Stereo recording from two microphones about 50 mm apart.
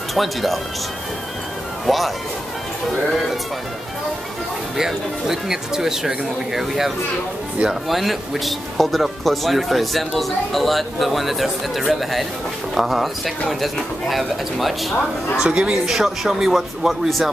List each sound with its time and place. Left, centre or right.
0.1 s speech: centre
1.9 s speech: centre
4.7 s speech: centre
7.9 s speech: centre
15.4 s speech: centre
15.9 s speech: centre